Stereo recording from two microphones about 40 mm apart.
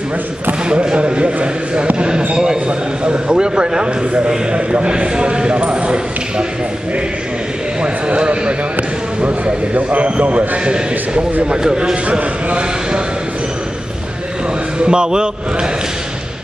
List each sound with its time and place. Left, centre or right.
0.7 s speech: right
2.0 s basketball bounce: right
2.3 s a sound: centre
3.0 s speech: right
7.8 s a sound: right
9.8 s a man's voice: right
10.6 s speech: right
14.8 s speech: right